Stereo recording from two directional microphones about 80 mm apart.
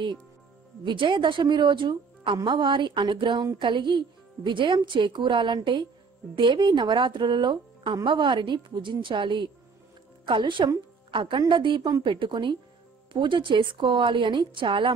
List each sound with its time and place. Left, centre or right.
0.8 s speech: right